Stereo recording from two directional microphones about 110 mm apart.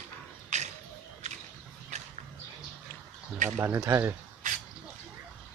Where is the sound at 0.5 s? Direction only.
90° right.